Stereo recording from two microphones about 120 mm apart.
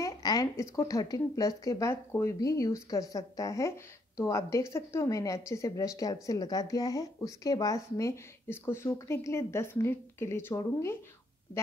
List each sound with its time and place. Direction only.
0.0 s speech: 30° left (ahead or behind)